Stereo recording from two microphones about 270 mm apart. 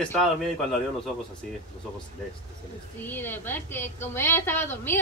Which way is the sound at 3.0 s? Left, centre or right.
Centre.